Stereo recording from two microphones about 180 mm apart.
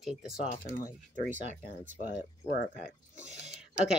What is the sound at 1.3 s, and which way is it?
Speech, 45° right (ahead or behind).